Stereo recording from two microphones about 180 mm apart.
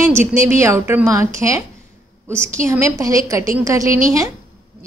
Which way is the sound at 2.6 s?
15° right (ahead or behind).